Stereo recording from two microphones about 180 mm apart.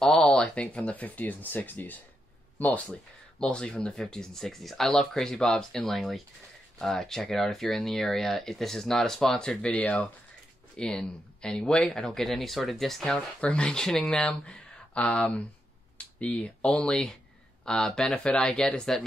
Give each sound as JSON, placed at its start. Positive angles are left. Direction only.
{"t": 0.0, "sound": "speech", "side_deg": 5}